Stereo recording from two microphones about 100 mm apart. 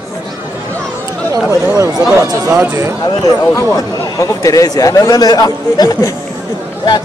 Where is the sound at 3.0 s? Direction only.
35° left (ahead or behind).